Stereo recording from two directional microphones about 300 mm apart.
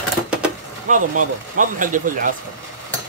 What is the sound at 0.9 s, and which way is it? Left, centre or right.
Speech, right.